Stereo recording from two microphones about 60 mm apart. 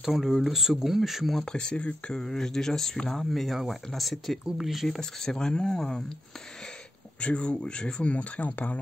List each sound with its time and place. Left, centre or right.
0.0 s speech: centre
1.4 s speech: centre
7.2 s speech: centre